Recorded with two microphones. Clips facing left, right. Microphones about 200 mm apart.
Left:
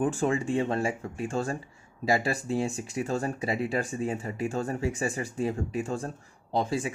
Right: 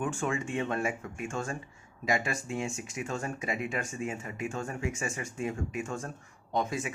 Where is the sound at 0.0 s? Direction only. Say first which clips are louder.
Left 6 dB; 35° left (ahead or behind).